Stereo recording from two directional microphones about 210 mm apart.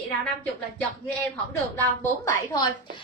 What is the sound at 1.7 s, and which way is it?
Speech, 10° left (ahead or behind).